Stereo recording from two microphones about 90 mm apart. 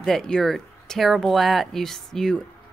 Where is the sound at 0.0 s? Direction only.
5° left (ahead or behind).